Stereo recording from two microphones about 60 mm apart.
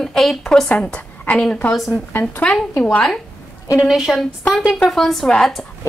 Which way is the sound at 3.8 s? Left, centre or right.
Centre.